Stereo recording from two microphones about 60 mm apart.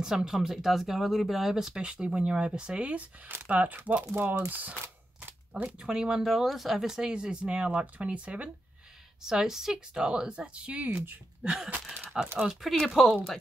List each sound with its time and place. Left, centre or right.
0.0 s speech: centre; by 5.8 s right
5.8 s speech: centre
9.2 s speech: centre
11.4 s speech: centre
12.5 s speech: centre